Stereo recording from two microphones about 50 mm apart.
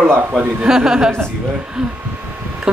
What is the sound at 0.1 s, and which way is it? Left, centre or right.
Speech, right.